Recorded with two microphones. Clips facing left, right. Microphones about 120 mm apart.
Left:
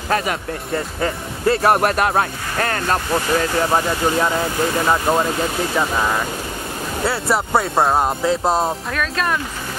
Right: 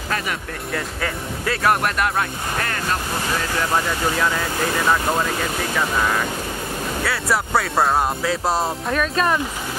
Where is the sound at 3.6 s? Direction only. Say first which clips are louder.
Left 3 dB; 25° left (ahead or behind).